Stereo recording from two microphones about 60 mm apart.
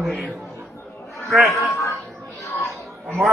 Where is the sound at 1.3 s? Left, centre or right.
Centre.